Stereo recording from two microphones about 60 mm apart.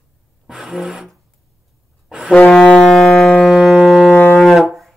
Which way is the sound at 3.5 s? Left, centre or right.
Centre.